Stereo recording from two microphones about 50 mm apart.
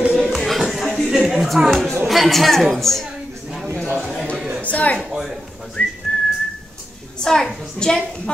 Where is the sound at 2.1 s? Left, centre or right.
Centre.